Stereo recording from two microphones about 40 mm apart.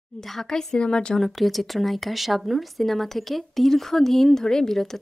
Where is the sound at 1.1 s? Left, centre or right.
Centre.